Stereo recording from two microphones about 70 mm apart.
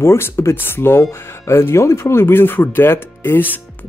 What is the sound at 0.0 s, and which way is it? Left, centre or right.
Speech, left.